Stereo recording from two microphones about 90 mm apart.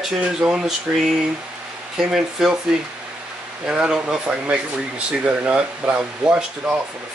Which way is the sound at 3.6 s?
10° right (ahead or behind).